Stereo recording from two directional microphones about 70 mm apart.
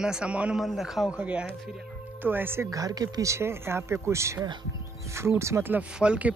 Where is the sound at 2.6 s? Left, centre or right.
Right.